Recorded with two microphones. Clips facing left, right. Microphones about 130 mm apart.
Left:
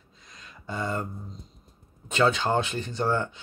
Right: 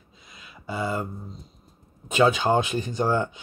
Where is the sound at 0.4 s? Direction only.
10° right (ahead or behind).